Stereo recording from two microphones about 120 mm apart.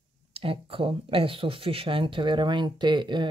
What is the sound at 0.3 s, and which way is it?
Speech, 50° right (ahead or behind).